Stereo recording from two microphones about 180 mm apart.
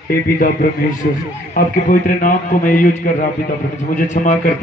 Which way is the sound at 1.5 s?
45° left (ahead or behind).